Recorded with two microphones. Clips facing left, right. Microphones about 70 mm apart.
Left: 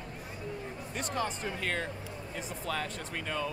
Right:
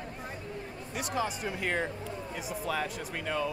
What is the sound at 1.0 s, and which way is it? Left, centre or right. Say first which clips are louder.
Speech: right 2 dB; centre.